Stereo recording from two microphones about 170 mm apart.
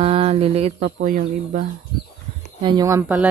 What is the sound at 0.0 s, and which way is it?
Speech, 35° right (ahead or behind).